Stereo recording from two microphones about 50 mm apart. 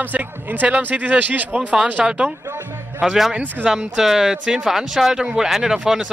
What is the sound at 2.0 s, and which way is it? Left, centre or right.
Speech, centre.